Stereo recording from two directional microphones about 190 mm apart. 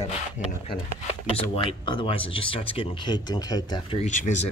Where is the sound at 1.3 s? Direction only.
30° left (ahead or behind).